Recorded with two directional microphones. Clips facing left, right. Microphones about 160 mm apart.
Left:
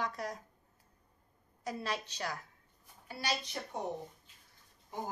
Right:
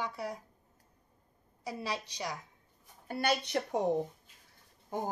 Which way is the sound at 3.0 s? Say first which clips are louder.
Right 6 dB; 55° right (ahead or behind).